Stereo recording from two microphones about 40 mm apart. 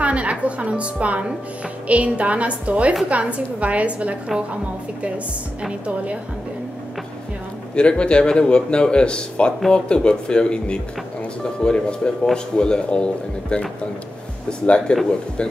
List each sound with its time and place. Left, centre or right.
0.0 s a woman's voice: right
5.7 s a woman's voice: right
7.7 s a man's voice: left
14.9 s a man's voice: left